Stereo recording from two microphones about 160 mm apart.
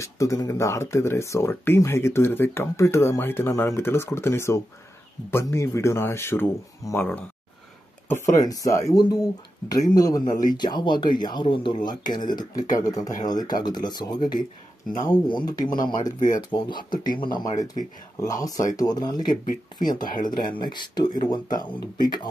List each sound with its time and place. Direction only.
0.0 s speech: 20° left (ahead or behind)
8.1 s speech: 20° left (ahead or behind)
20.0 s speech: 60° left (ahead or behind)
20.5 s speech: 25° left (ahead or behind)